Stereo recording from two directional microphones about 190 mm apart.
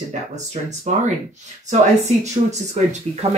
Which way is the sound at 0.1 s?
40° right (ahead or behind).